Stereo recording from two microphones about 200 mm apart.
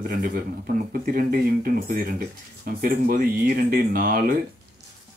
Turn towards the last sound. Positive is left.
turn(degrees=-45)  # may be behind; listen again after turning